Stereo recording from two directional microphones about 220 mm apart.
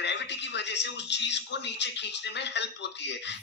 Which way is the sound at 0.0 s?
50° left (ahead or behind).